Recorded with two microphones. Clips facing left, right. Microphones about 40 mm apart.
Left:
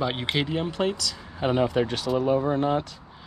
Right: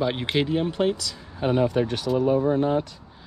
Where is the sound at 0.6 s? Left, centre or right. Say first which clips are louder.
Right 2 dB; centre.